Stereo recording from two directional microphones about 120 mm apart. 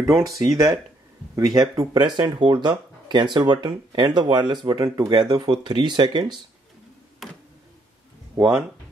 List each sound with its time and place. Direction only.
0.4 s speech: 30° right (ahead or behind)
8.4 s speech: 25° right (ahead or behind)